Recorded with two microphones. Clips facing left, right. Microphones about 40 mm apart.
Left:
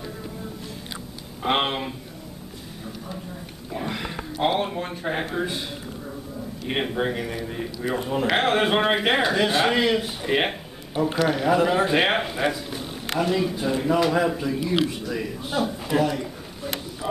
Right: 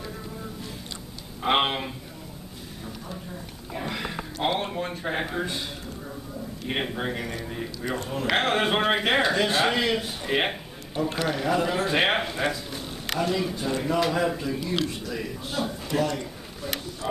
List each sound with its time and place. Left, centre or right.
1.4 s speech: centre
3.7 s speech: centre
6.7 s a man's voice: centre
8.0 s a man's voice: centre
8.4 s a man's voice: centre
11.9 s a man's voice: centre